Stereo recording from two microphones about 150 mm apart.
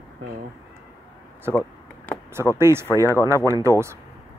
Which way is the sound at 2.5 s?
15° right (ahead or behind).